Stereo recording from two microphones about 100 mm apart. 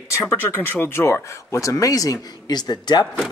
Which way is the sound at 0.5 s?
20° left (ahead or behind).